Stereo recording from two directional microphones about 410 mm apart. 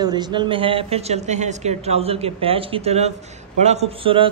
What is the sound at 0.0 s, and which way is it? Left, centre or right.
A man's voice, centre.